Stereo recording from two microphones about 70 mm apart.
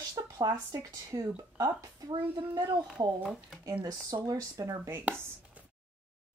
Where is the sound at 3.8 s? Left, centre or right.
Right.